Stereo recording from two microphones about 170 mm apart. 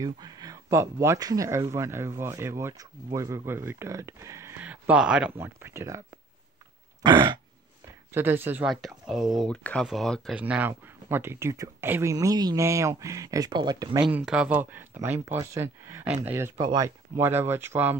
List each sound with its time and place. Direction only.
0.0 s speech: 20° right (ahead or behind)
7.0 s throat clearing: 25° right (ahead or behind)
8.1 s speech: 10° right (ahead or behind)
10.4 s speech: 10° right (ahead or behind)
14.0 s speech: 5° right (ahead or behind)